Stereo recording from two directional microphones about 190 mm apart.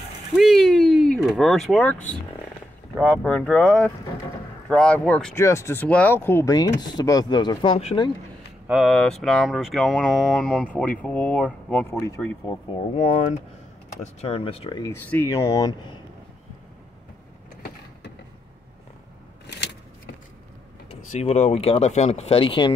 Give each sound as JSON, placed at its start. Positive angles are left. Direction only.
{"t": 0.4, "sound": "speech", "side_deg": 0}
{"t": 8.6, "sound": "speech", "side_deg": 0}
{"t": 12.9, "sound": "speech", "side_deg": 35}
{"t": 14.8, "sound": "speech", "side_deg": 10}
{"t": 21.1, "sound": "speech", "side_deg": 35}